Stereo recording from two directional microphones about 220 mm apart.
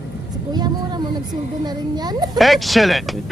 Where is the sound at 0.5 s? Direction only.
20° right (ahead or behind).